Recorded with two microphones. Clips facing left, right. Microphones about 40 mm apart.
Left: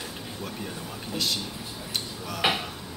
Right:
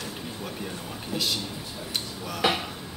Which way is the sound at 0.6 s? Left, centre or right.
Centre.